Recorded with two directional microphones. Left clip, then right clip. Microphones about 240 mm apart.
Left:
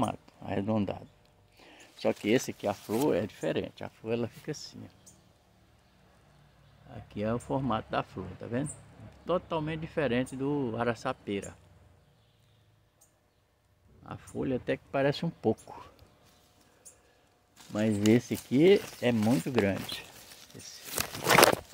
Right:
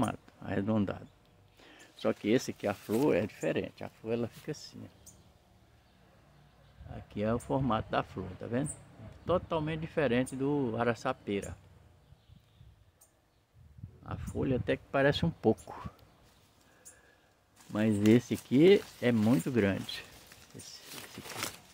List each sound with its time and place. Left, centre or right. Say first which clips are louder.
0.0 s speech: left 2 dB; centre
2.7 s speech: even; centre
6.9 s speech: even; centre
14.0 s speech: even; centre
17.7 s speech: left 1 dB; centre